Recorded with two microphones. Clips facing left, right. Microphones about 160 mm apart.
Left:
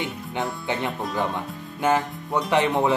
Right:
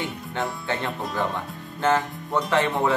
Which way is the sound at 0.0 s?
15° left (ahead or behind).